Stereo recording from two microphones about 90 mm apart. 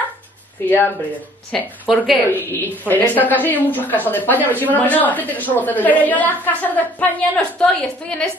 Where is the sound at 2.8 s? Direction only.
20° left (ahead or behind).